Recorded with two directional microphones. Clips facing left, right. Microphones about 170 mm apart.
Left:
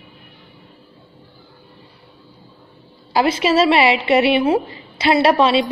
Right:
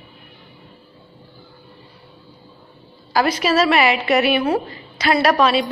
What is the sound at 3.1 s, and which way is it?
A woman's voice, 25° left (ahead or behind).